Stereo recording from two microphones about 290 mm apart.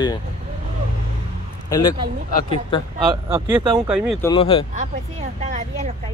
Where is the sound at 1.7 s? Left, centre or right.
Centre.